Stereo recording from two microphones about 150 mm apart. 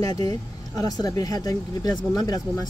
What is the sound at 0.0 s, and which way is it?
Speech, 25° left (ahead or behind).